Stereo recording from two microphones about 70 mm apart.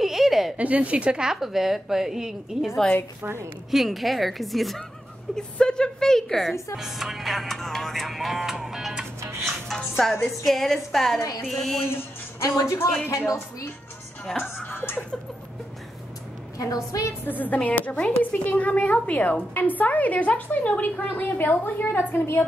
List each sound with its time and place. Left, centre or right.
0.0 s a sound: centre
0.6 s a woman's voice: centre
3.7 s music: centre
5.3 s a woman's voice: centre
6.8 s music: centre
9.7 s music: centre
11.4 s a woman's voice: centre
11.9 s music: left
12.4 s a woman's voice: left
14.6 s speech: left
16.5 s a woman's voice: left
17.2 s a woman's voice: left